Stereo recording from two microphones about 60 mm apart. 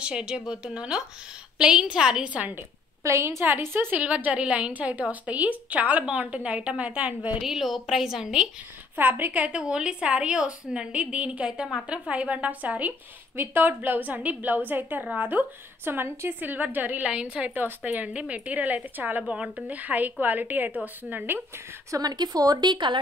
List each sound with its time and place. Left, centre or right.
0.0 s a woman's voice: centre
2.3 s a woman's voice: right
3.0 s a woman's voice: right
3.9 s a woman's voice: right
7.4 s a woman's voice: centre
8.9 s a woman's voice: right
17.1 s a woman's voice: centre
17.6 s a woman's voice: right
19.2 s a woman's voice: centre
21.9 s speech: right